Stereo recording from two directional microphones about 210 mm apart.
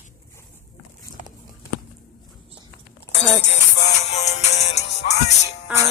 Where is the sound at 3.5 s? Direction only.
30° left (ahead or behind).